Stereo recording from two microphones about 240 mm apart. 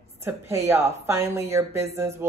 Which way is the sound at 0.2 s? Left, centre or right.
Centre.